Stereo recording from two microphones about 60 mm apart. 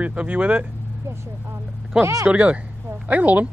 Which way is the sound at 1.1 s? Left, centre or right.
Right.